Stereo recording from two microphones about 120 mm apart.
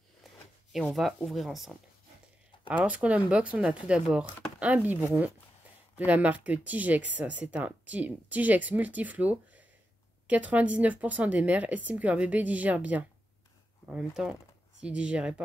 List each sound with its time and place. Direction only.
0.7 s speech: centre (ahead or behind)
4.7 s speech: 20° right (ahead or behind)